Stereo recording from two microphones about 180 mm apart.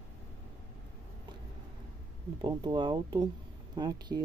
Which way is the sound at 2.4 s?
25° right (ahead or behind).